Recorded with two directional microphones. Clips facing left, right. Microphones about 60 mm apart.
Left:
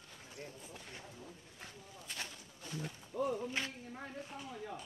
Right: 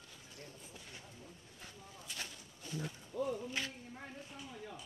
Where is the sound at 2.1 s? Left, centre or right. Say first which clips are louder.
Left 2 dB; left.